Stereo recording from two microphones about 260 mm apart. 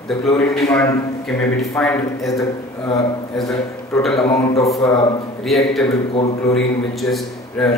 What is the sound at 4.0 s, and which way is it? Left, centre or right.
A man's voice, centre.